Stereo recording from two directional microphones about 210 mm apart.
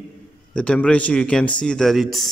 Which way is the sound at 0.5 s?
5° left (ahead or behind).